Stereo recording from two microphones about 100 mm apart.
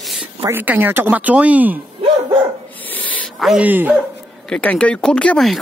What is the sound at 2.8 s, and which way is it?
Dog, 15° left (ahead or behind).